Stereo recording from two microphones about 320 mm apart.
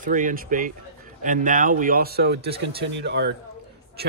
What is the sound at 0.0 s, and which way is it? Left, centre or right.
Speech, right.